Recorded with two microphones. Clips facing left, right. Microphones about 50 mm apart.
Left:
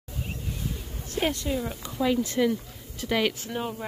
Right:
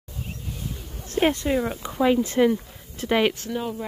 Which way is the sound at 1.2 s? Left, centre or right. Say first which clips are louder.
Right 6 dB; right.